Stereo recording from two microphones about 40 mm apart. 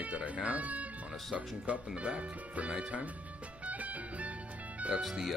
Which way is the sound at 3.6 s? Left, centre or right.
Right.